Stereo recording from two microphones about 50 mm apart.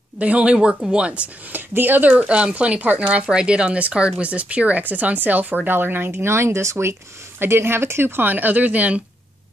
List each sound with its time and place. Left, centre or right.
0.2 s speech: right
1.5 s speech: right
2.1 s speech: right
8.2 s speech: right